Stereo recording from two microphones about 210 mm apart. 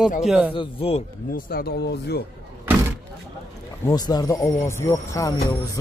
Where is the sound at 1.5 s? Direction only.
45° left (ahead or behind).